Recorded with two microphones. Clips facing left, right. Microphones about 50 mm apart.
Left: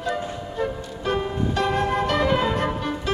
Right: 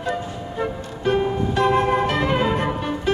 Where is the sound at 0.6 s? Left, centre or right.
Centre.